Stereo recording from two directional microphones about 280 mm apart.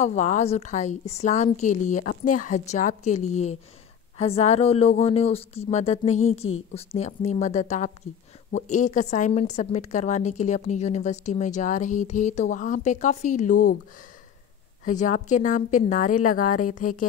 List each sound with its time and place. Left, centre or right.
0.0 s a woman's voice: left
14.9 s a woman's voice: left